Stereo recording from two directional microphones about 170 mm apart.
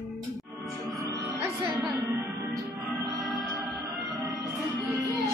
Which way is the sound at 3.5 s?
20° right (ahead or behind).